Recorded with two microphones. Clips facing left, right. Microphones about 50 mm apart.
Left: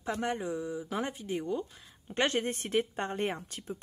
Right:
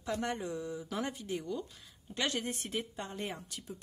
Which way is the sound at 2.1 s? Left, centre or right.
Left.